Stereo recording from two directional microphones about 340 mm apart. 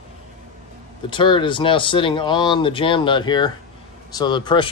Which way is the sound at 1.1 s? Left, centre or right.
Centre.